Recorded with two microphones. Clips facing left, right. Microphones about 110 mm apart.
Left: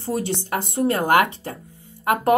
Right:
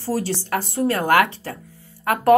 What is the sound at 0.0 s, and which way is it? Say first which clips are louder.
A woman's voice: right 1 dB; 20° left (ahead or behind).